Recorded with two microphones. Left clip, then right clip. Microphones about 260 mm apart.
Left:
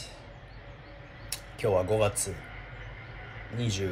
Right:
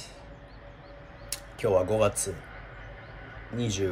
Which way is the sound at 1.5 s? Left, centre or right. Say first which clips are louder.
Right 2 dB; centre.